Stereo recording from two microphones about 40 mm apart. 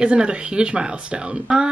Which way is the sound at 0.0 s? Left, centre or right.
Right.